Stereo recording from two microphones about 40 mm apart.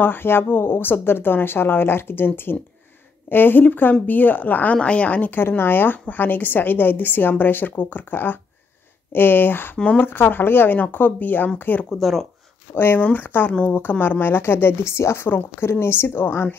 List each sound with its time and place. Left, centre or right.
0.0 s a woman's voice: left
4.8 s speech: left
5.6 s a woman's voice: left
10.8 s speech: left
11.9 s speech: centre
12.7 s a woman's voice: left
13.5 s speech: left
13.7 s a woman's voice: left